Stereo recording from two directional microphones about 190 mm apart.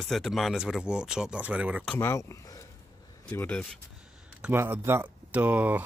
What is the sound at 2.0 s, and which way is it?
Speech, 15° left (ahead or behind).